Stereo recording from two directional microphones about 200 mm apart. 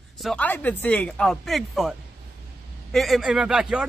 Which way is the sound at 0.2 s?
5° left (ahead or behind).